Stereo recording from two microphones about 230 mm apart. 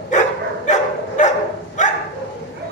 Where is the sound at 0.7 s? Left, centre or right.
Left.